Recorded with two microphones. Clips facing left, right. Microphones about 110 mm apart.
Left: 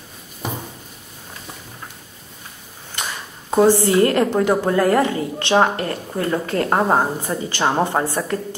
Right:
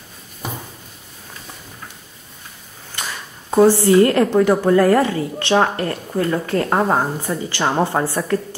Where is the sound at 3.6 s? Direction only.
20° left (ahead or behind).